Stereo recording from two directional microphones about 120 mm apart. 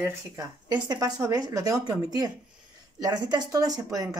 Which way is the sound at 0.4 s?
30° right (ahead or behind).